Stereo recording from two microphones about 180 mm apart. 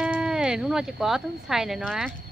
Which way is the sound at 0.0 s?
5° right (ahead or behind).